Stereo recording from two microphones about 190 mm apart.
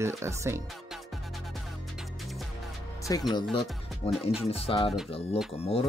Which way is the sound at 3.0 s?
20° left (ahead or behind).